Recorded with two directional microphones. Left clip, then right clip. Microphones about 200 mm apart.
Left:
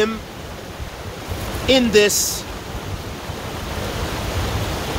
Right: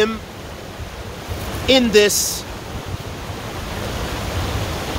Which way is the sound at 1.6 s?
15° right (ahead or behind).